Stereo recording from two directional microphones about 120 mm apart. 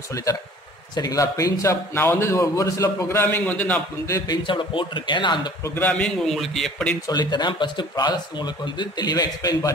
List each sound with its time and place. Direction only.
0.1 s a man's voice: 30° left (ahead or behind); by 3.8 s 10° left (ahead or behind)
4.4 s speech: 45° left (ahead or behind)
5.8 s a man's voice: 10° left (ahead or behind)
7.1 s speech: 35° left (ahead or behind)